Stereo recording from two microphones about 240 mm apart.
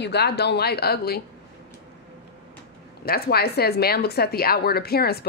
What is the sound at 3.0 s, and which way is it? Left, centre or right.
Speech, left.